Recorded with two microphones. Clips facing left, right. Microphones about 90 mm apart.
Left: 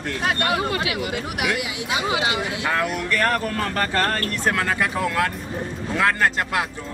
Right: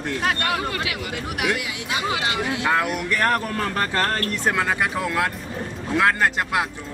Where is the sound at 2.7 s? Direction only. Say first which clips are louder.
Right 1 dB; 10° right (ahead or behind).